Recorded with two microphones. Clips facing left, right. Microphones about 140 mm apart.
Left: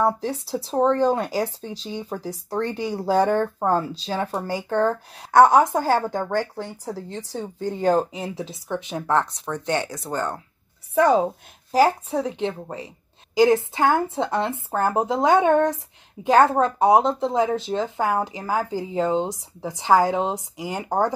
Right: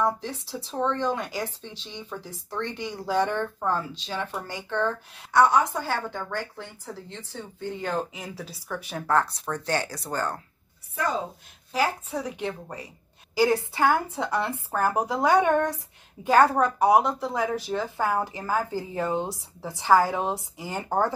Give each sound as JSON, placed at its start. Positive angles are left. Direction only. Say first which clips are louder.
{"t": 0.0, "sound": "speech", "louder": "left 4 dB", "side_deg": 35}
{"t": 11.0, "sound": "a woman's voice", "louder": "left 11 dB", "side_deg": 80}
{"t": 11.7, "sound": "a woman's voice", "louder": "left 8 dB", "side_deg": 35}